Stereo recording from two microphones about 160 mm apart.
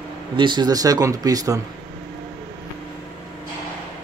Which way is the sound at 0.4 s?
30° right (ahead or behind).